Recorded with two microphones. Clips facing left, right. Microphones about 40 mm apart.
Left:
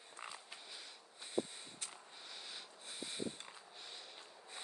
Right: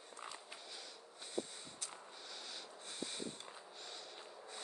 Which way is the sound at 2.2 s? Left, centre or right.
Centre.